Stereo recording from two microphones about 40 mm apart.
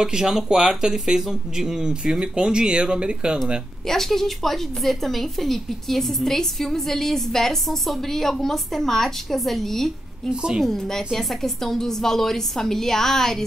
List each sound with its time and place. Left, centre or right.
0.0 s speech: centre
3.8 s a woman's voice: centre
10.3 s a woman's voice: right
10.6 s a woman's voice: centre